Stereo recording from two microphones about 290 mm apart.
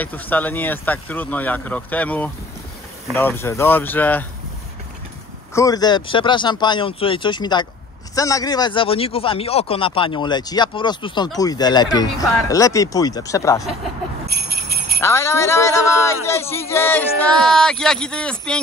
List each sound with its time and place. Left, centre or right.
0.0 s speech: centre
5.5 s speech: centre
15.0 s speech: centre